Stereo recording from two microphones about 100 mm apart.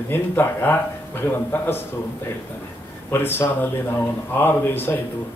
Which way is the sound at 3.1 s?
20° left (ahead or behind).